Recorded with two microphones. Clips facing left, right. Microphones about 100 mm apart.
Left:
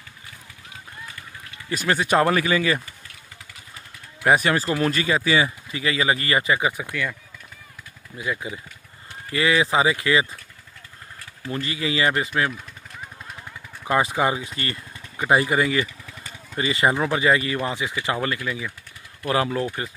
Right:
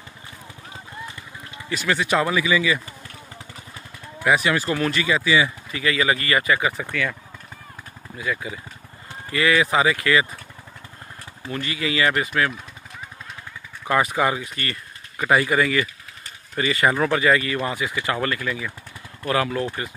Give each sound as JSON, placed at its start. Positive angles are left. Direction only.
{"t": 1.7, "sound": "speech", "side_deg": 40}
{"t": 4.2, "sound": "speech", "side_deg": 45}
{"t": 4.6, "sound": "speech", "side_deg": 35}
{"t": 5.7, "sound": "speech", "side_deg": 30}
{"t": 6.8, "sound": "speech", "side_deg": 5}
{"t": 8.2, "sound": "speech", "side_deg": 25}
{"t": 11.5, "sound": "speech", "side_deg": 30}
{"t": 13.8, "sound": "speech", "side_deg": 25}